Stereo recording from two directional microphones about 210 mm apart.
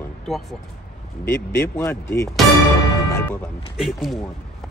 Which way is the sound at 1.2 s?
10° left (ahead or behind).